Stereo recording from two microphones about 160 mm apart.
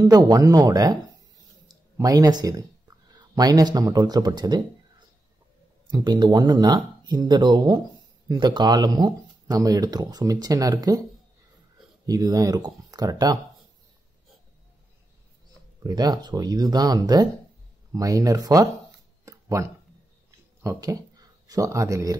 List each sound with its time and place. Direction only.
0.0 s speech: 20° right (ahead or behind)
5.9 s speech: 25° right (ahead or behind)
12.1 s speech: 25° right (ahead or behind)
15.8 s speech: 25° right (ahead or behind)
19.2 s a sound: 20° right (ahead or behind)
20.6 s speech: 20° right (ahead or behind)